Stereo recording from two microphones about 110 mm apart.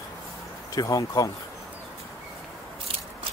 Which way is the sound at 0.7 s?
35° left (ahead or behind).